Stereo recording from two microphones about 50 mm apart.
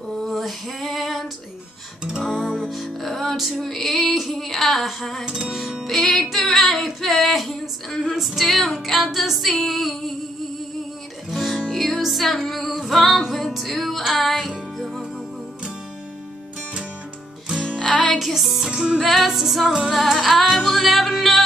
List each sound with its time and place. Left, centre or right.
0.3 s female singing: centre
2.3 s music: centre
5.2 s music: centre
11.2 s music: centre
17.6 s music: centre
18.2 s music: centre
18.7 s music: centre
18.9 s music: centre